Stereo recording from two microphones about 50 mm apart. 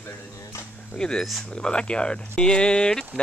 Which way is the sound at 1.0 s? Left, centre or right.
Centre.